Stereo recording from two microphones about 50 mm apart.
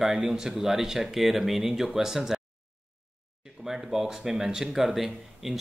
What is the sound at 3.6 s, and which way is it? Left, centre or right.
Speech, centre.